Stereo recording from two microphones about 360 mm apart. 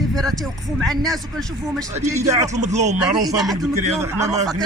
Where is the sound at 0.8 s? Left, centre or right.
Centre.